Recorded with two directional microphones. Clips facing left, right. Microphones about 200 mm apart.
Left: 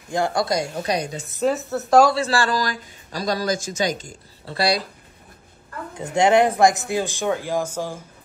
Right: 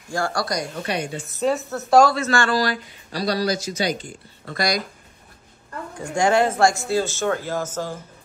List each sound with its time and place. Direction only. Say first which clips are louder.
0.1 s a woman's voice: left 3 dB; 20° left (ahead or behind)
0.8 s speech: left 2 dB; 35° left (ahead or behind)
1.4 s a woman's voice: left 1 dB; centre (ahead or behind)
2.1 s speech: even; 35° left (ahead or behind)
3.1 s a man's voice: right 1 dB; 45° left (ahead or behind)
5.9 s speech: left 2 dB; 20° left (ahead or behind)